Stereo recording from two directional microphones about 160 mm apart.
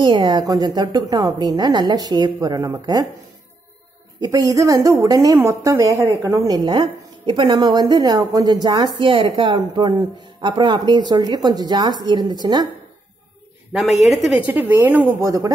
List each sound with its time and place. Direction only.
0.0 s a woman's voice: 30° right (ahead or behind)
4.2 s a woman's voice: 20° right (ahead or behind)
13.7 s a woman's voice: centre (ahead or behind); by 15.5 s 20° right (ahead or behind)